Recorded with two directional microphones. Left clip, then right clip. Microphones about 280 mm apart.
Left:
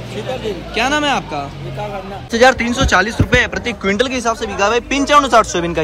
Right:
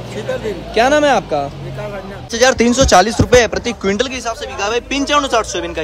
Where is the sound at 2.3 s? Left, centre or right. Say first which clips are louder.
Left 1 dB; centre.